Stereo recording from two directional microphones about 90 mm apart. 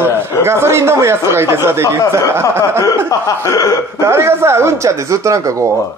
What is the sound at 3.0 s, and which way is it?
Speech, 40° left (ahead or behind).